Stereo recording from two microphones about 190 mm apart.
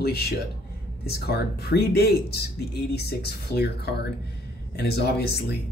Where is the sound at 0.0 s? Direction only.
55° left (ahead or behind).